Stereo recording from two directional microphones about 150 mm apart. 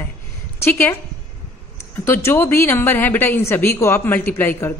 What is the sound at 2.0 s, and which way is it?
A woman's voice, 15° left (ahead or behind).